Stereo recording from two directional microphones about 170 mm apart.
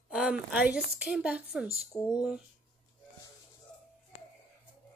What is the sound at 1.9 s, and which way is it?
Speech, 10° left (ahead or behind).